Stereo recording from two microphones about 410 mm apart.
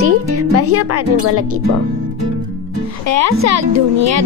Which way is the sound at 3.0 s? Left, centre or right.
Right.